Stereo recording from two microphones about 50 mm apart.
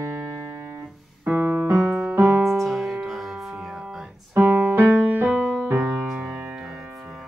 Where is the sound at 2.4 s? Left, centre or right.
Centre.